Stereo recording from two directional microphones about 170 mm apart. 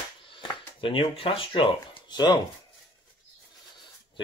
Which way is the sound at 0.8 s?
30° left (ahead or behind).